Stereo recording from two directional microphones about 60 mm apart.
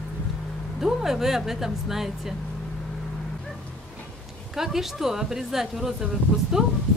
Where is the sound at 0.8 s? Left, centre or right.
Centre.